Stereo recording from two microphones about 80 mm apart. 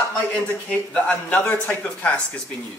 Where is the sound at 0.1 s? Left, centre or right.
Centre.